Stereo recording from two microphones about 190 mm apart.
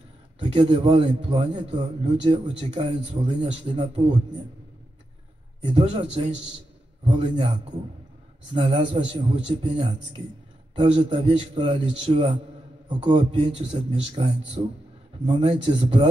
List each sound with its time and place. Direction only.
0.4 s a man's voice: 25° right (ahead or behind)
5.8 s a man's voice: 30° right (ahead or behind)
8.5 s a man's voice: 30° right (ahead or behind)